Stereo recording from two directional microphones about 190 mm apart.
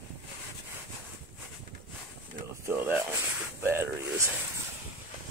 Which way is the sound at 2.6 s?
10° right (ahead or behind).